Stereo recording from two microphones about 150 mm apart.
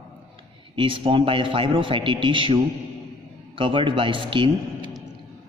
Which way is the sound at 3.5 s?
35° right (ahead or behind).